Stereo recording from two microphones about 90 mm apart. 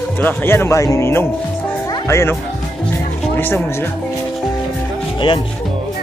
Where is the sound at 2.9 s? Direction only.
25° left (ahead or behind).